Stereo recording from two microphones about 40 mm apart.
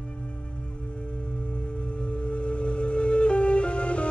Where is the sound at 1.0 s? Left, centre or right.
Left.